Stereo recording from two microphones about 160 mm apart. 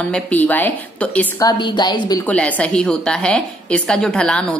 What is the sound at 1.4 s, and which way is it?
Speech, 30° left (ahead or behind).